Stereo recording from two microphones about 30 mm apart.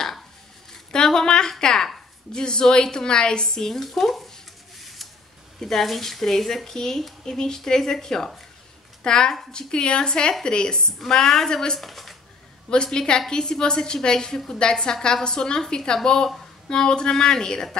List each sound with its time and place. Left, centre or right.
0.9 s a sound: left
1.6 s speech: centre
5.6 s speech: centre
9.0 s speech: left
11.2 s speech: centre
11.8 s speech: centre
12.6 s speech: left